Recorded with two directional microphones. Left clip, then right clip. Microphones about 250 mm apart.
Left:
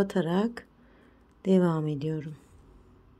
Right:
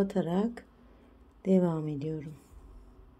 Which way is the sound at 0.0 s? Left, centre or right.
Centre.